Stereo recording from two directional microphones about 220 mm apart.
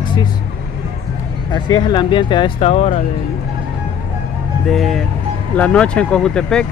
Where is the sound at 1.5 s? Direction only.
20° left (ahead or behind).